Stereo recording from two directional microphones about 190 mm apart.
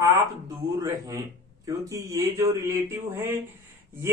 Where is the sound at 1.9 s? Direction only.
15° right (ahead or behind).